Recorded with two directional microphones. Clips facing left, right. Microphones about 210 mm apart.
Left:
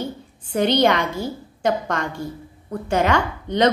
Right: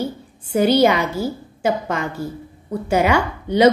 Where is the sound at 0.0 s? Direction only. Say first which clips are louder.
Right 3 dB; 5° right (ahead or behind).